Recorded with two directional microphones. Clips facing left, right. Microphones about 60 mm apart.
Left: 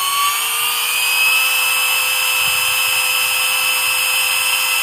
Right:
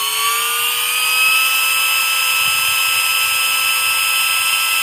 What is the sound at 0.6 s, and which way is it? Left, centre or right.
Helicopter, centre.